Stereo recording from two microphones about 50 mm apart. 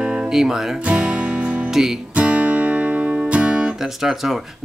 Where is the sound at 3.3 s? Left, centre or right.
Centre.